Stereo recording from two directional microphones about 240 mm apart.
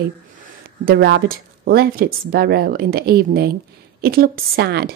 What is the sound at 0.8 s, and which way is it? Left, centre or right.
A woman's voice, right.